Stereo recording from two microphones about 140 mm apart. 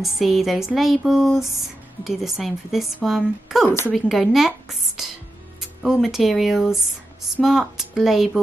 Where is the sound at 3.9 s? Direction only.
Centre (ahead or behind).